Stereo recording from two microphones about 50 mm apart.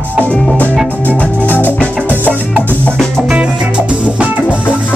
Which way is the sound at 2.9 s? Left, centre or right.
Centre.